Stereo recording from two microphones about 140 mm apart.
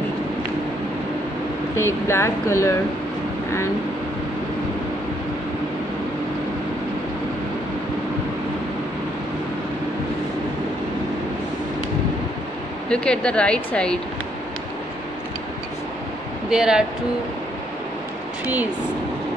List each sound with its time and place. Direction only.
1.8 s speech: 20° left (ahead or behind)
12.9 s speech: 5° left (ahead or behind)
16.4 s speech: 5° right (ahead or behind)
18.4 s speech: 10° right (ahead or behind)